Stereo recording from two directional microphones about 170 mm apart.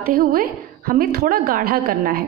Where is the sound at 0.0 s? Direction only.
55° right (ahead or behind).